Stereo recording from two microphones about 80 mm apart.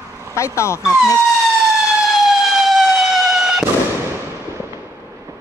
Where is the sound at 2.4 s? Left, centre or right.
Centre.